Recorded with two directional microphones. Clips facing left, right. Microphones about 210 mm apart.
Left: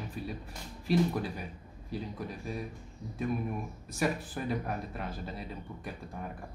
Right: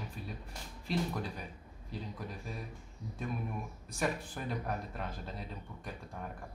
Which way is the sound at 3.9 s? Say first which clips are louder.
Left 4 dB; 5° left (ahead or behind).